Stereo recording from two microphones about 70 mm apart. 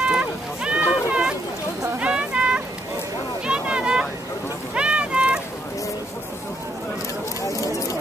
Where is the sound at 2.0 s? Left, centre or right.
Centre.